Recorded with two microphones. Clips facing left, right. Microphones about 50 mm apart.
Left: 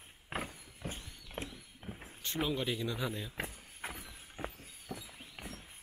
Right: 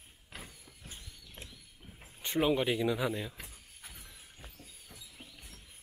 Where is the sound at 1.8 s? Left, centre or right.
Left.